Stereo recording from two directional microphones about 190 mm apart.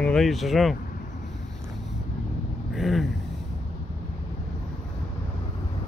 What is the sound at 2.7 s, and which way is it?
Vehicle, centre (ahead or behind).